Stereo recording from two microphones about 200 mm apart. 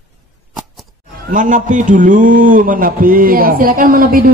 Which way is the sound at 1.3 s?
40° right (ahead or behind).